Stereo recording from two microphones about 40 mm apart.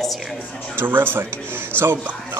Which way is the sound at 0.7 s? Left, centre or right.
Right.